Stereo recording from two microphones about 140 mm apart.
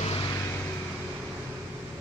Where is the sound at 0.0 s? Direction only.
40° left (ahead or behind).